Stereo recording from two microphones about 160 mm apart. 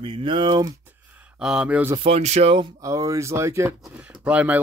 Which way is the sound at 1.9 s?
35° right (ahead or behind).